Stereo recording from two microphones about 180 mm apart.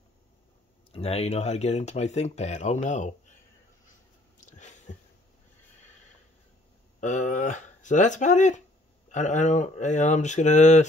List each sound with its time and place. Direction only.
0.9 s speech: 35° left (ahead or behind)
4.5 s a sound: 40° left (ahead or behind)
7.0 s speech: 45° left (ahead or behind)